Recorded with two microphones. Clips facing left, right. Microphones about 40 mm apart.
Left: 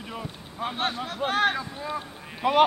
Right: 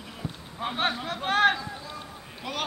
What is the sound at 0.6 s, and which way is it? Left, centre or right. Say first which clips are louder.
Speech: even; centre.